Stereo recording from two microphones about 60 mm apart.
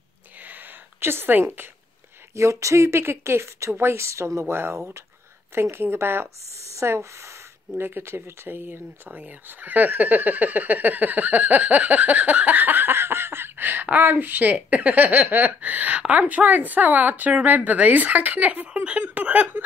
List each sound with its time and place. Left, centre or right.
0.5 s a sound: right
2.3 s speech: right
4.5 s speech: right
6.8 s speech: right
7.7 s speech: right